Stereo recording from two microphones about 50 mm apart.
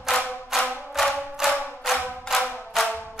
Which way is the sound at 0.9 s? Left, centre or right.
Centre.